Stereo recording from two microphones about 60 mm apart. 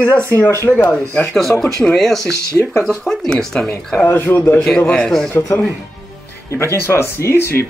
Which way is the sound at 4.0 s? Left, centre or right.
Left.